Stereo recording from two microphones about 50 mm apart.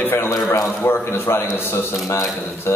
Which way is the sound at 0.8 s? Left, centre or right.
Left.